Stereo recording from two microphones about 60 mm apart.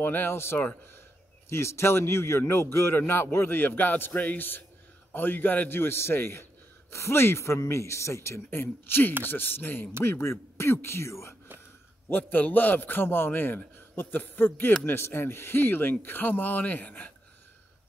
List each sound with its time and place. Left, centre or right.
0.0 s a man's voice: left
10.0 s speech: left
12.1 s a man's voice: left